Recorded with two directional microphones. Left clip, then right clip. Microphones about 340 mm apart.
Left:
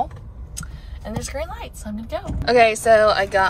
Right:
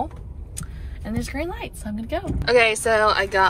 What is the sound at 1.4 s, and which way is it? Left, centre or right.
Speech, left.